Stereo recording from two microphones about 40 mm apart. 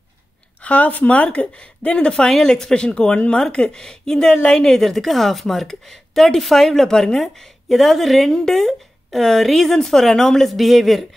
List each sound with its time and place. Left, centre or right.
0.6 s a woman's voice: left
2.1 s a woman's voice: centre
7.6 s a woman's voice: centre
10.5 s a woman's voice: centre